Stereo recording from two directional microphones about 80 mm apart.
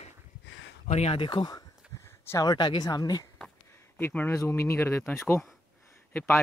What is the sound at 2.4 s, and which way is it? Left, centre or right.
Speech, left.